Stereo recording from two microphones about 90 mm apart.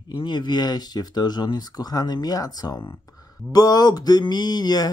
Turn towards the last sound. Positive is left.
turn(degrees=50)  # may be behind; listen again after turning